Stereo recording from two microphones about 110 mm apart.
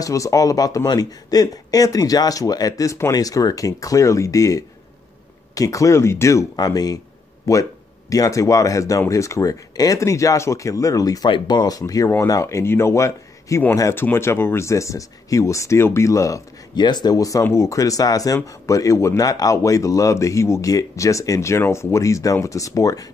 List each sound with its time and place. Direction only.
0.0 s speech: 30° left (ahead or behind)
6.5 s speech: 35° left (ahead or behind)
11.2 s speech: 45° left (ahead or behind); by 16.4 s 30° left (ahead or behind)
16.7 s speech: 40° left (ahead or behind)